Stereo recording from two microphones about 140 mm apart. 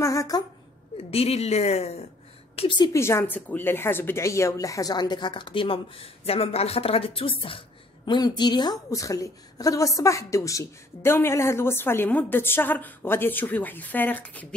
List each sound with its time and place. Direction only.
0.0 s a sound: 25° left (ahead or behind)
0.9 s a woman's voice: 45° left (ahead or behind)
2.8 s speech: 20° left (ahead or behind)